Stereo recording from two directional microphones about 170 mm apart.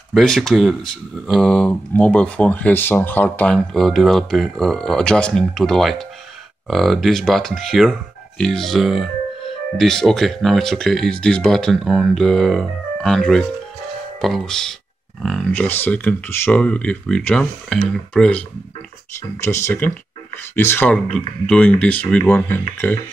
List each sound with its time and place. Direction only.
0.1 s speech: 5° left (ahead or behind)
19.4 s speech: 15° left (ahead or behind)